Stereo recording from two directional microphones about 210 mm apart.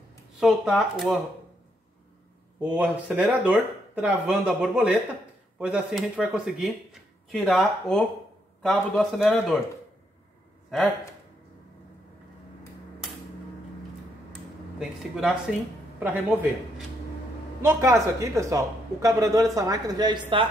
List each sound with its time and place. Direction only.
0.4 s speech: 5° right (ahead or behind)
2.6 s speech: 5° right (ahead or behind)
14.8 s speech: 5° right (ahead or behind); by 20.4 s 25° right (ahead or behind)